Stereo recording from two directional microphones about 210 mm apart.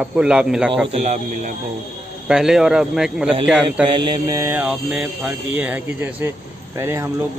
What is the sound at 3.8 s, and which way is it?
Speech, 25° right (ahead or behind).